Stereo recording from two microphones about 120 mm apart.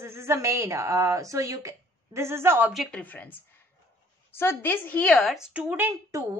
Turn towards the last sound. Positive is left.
turn(degrees=-20)  # may be behind; listen again after turning